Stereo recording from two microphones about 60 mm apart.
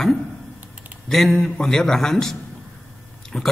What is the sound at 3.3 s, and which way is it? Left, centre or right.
Speech, centre.